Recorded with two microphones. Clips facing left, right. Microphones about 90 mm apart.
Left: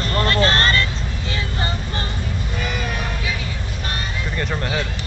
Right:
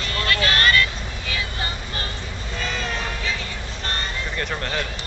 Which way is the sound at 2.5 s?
15° left (ahead or behind).